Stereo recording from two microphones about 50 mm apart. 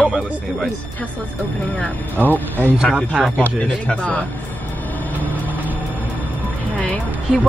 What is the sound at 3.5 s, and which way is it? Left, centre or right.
Speech, left.